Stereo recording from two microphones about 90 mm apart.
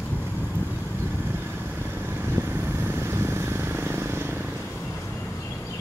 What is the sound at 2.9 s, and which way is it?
Vehicle, 30° right (ahead or behind).